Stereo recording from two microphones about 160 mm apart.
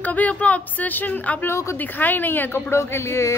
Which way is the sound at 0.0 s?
10° left (ahead or behind).